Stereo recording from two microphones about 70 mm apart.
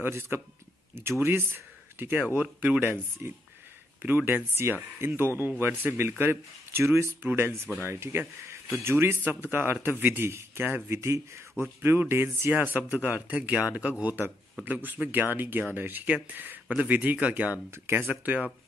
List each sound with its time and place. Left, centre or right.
0.0 s speech: right
3.2 s speech: right
4.0 s speech: right
17.6 s speech: right
18.2 s speech: right